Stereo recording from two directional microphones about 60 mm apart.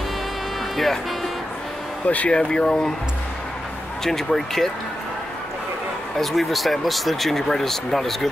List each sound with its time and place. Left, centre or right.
2.0 s speech: left
4.0 s speech: centre
6.1 s speech: centre